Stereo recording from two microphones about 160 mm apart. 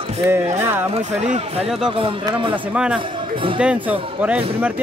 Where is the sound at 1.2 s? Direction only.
40° right (ahead or behind).